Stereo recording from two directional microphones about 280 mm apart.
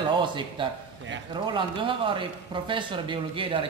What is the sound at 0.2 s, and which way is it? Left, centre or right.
Speech, centre.